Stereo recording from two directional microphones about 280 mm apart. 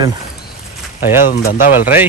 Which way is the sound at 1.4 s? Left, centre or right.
Left.